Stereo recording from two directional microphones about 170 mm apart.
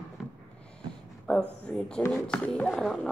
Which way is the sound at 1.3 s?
5° left (ahead or behind).